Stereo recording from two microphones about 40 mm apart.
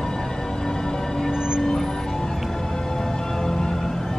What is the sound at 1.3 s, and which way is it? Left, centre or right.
Music, centre.